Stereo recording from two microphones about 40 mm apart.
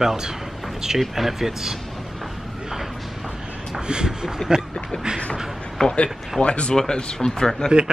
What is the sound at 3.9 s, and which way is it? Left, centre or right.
Speech, centre.